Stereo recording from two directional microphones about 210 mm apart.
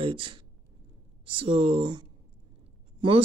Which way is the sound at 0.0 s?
25° right (ahead or behind).